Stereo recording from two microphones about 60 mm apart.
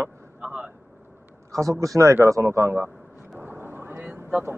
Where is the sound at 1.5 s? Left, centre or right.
Right.